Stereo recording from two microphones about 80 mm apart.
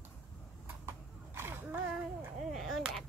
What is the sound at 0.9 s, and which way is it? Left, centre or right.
Horse, right.